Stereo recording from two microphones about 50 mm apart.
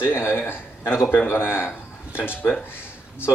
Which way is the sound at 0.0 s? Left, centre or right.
Left.